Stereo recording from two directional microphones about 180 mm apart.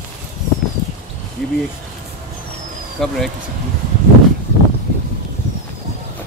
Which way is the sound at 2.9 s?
Centre (ahead or behind).